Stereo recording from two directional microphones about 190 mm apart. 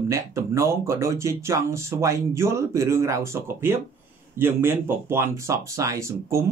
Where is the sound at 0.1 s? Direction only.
15° right (ahead or behind).